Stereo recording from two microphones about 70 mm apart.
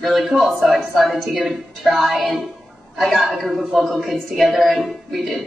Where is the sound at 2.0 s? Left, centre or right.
Centre.